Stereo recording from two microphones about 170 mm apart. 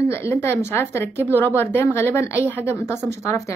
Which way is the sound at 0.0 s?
15° left (ahead or behind).